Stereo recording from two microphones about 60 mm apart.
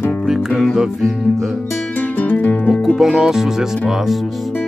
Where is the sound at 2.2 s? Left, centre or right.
Left.